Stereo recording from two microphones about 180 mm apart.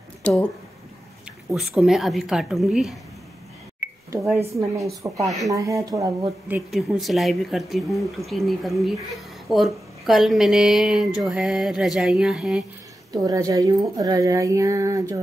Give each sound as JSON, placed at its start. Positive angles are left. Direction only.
{"t": 0.2, "sound": "speech", "side_deg": 5}
{"t": 1.5, "sound": "speech", "side_deg": 0}
{"t": 4.1, "sound": "speech", "side_deg": -15}
{"t": 6.5, "sound": "speech", "side_deg": 0}
{"t": 13.1, "sound": "speech", "side_deg": -20}